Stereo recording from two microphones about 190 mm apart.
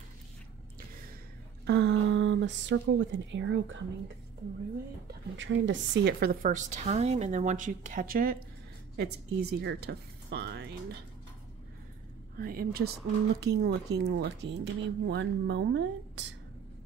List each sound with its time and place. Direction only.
1.7 s speech: 70° right (ahead or behind)
5.4 s a woman's voice: 75° right (ahead or behind); by 8.4 s 50° right (ahead or behind)
8.9 s speech: 60° right (ahead or behind)
12.4 s a woman's voice: 50° right (ahead or behind); by 16.3 s 70° right (ahead or behind)